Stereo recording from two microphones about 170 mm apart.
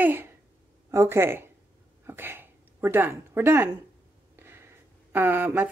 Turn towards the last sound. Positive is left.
turn(degrees=-10)  # may be behind; listen again after turning